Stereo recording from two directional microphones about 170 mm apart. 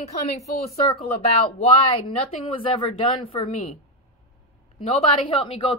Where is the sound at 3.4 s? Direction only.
45° left (ahead or behind).